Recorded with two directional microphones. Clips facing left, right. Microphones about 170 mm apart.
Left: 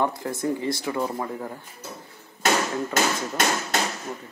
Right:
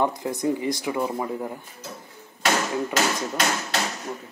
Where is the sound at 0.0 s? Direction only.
15° right (ahead or behind).